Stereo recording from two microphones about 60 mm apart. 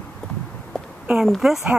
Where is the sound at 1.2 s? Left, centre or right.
Centre.